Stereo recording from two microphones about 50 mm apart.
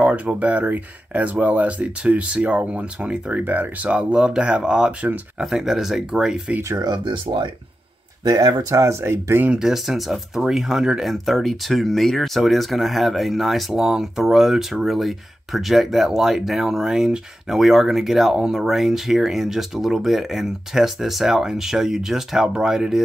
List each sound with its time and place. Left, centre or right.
0.0 s speech: right
3.3 s speech: right
4.1 s speech: centre
5.4 s speech: centre
8.7 s speech: right
9.6 s speech: centre